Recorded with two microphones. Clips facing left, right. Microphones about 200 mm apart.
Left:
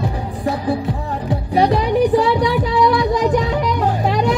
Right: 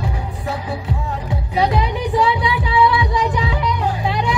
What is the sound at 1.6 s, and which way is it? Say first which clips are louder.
Music: left 5 dB; 40° left (ahead or behind).